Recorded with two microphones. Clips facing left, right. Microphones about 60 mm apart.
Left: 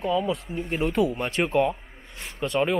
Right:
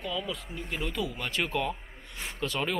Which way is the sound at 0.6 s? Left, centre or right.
Left.